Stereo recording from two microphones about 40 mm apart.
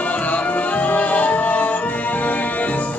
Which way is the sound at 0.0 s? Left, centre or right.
Left.